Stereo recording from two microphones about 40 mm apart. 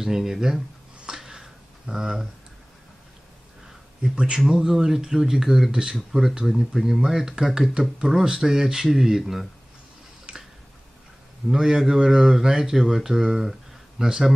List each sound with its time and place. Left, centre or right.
0.0 s speech: centre
1.0 s a sound: centre
4.1 s speech: centre
6.4 s speech: centre
10.3 s a sound: right
11.5 s speech: centre